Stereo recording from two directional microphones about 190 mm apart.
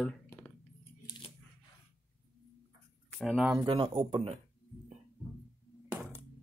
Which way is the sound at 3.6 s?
30° right (ahead or behind).